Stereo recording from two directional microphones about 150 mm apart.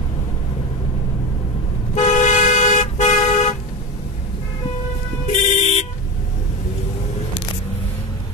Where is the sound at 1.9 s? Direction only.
55° left (ahead or behind).